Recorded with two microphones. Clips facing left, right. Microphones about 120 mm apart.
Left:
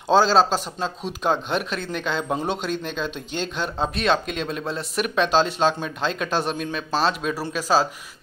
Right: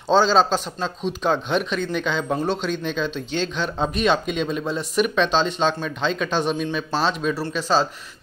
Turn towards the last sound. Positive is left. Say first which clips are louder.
# even
turn(degrees=5)  # may be behind; listen again after turning